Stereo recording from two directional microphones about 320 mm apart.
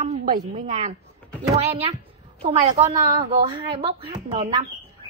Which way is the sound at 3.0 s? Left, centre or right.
Right.